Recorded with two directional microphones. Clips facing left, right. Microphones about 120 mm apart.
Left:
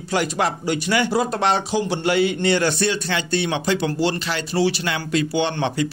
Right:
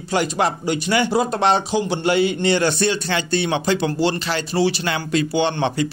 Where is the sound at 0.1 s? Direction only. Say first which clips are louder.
Right 2 dB; 25° right (ahead or behind).